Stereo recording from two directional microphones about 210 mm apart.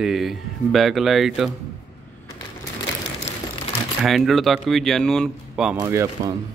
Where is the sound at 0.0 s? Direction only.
Centre (ahead or behind).